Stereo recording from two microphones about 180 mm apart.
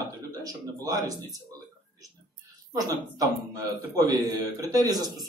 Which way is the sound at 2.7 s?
20° right (ahead or behind).